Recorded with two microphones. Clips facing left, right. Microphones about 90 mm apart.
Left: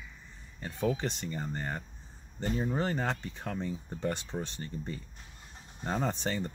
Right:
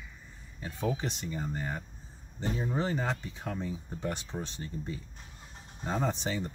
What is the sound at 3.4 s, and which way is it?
Speech, 15° right (ahead or behind).